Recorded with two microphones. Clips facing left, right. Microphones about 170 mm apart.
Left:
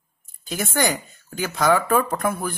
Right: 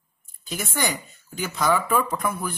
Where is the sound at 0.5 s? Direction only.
55° left (ahead or behind).